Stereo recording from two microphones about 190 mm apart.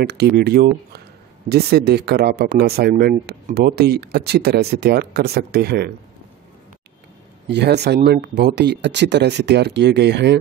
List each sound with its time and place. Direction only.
0.0 s speech: 60° right (ahead or behind)
7.4 s speech: 60° right (ahead or behind)